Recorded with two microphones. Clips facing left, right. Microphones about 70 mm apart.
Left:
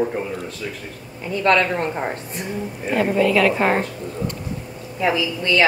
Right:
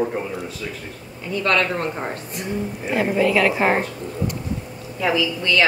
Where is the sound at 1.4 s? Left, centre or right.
Left.